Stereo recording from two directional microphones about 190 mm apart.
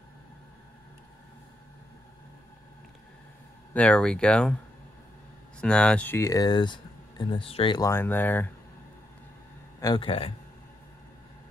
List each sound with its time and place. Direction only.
3.7 s speech: 5° left (ahead or behind)
5.6 s speech: 5° left (ahead or behind)
9.8 s a man's voice: 25° left (ahead or behind)